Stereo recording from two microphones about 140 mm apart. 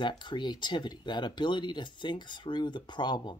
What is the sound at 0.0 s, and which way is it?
Speech, 35° left (ahead or behind).